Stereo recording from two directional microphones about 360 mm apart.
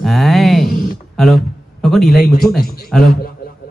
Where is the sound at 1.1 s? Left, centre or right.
Centre.